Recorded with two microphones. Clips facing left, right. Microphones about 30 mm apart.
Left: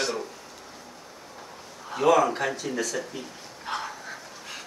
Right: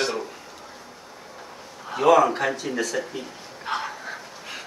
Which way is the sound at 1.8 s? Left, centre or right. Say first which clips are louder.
Right 3 dB; centre.